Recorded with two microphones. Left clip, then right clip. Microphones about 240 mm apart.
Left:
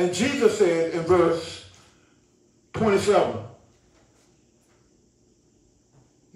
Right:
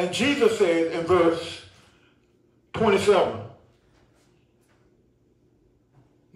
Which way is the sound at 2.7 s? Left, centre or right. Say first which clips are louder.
Right 1 dB; right.